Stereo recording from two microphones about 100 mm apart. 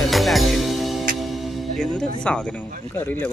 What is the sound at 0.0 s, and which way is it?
Music, centre (ahead or behind).